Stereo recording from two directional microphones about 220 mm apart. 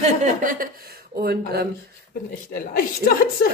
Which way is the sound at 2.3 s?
40° left (ahead or behind).